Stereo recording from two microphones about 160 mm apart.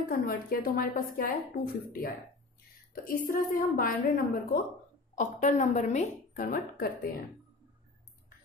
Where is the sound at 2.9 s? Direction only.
60° left (ahead or behind).